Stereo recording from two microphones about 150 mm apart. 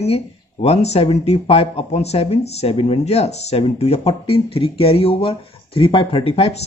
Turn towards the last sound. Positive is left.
turn(degrees=45)  # may be behind; listen again after turning